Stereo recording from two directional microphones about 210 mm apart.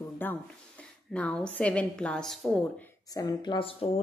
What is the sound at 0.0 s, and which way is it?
A woman's voice, 10° left (ahead or behind).